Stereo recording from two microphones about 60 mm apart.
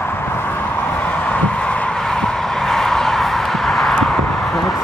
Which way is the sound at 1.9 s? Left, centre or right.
Centre.